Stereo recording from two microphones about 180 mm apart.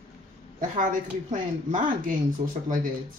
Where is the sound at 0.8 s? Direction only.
45° right (ahead or behind).